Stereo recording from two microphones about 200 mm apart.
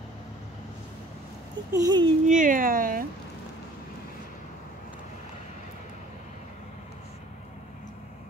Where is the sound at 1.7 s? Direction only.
20° right (ahead or behind).